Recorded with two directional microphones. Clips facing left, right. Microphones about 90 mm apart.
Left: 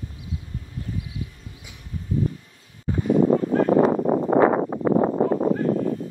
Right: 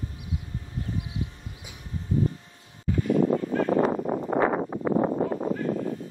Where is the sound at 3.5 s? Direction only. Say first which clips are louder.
Left 5 dB; 60° left (ahead or behind).